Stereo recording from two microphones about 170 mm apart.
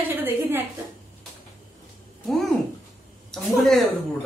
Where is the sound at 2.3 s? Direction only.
Centre (ahead or behind).